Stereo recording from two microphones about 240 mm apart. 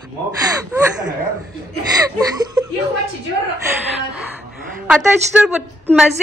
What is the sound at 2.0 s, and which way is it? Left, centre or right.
Speech, centre.